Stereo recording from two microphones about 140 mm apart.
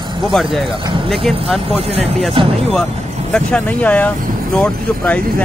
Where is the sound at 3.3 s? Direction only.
10° left (ahead or behind).